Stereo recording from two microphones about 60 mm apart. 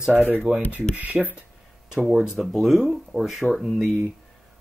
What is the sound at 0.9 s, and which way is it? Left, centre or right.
Speech, right.